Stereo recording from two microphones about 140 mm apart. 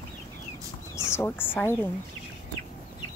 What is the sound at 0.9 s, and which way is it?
Speech, 20° left (ahead or behind).